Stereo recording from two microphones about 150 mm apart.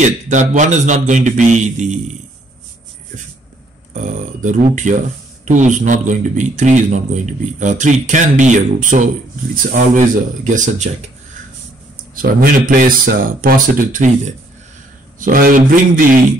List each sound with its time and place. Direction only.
0.3 s a man's voice: 55° right (ahead or behind)
3.9 s a man's voice: 55° right (ahead or behind)
12.2 s a man's voice: 75° right (ahead or behind)